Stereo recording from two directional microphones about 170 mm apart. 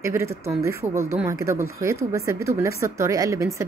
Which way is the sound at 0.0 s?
15° right (ahead or behind).